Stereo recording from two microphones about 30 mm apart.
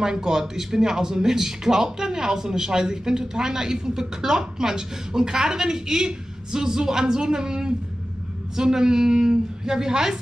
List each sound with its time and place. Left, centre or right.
0.0 s speech: right